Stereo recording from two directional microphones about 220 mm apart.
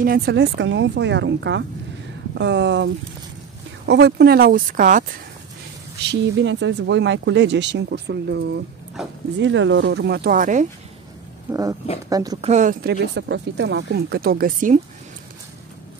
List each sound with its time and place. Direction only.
0.0 s speech: 45° right (ahead or behind)
6.0 s speech: 55° right (ahead or behind)
9.0 s speech: centre (ahead or behind)
9.4 s speech: 55° right (ahead or behind); by 10.7 s 35° right (ahead or behind)
11.5 s speech: 10° right (ahead or behind)
12.4 s speech: 30° right (ahead or behind)
13.0 s speech: 50° right (ahead or behind)